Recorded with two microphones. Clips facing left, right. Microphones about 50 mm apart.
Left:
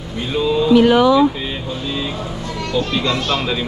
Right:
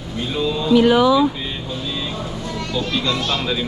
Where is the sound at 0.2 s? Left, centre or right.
Centre.